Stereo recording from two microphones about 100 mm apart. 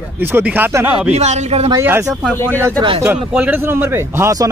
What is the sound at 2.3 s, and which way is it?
Speech, 20° left (ahead or behind).